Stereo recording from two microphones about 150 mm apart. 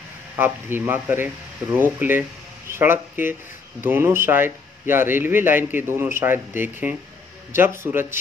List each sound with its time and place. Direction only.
0.4 s a man's voice: 15° right (ahead or behind)